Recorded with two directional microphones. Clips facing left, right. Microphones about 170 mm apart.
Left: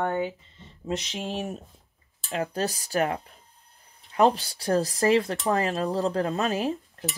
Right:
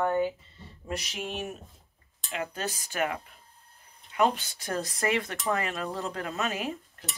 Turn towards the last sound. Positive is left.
turn(degrees=35)  # may be behind; listen again after turning